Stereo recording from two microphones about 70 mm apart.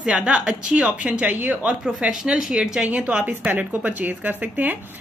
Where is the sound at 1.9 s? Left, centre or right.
Centre; by 4.7 s right.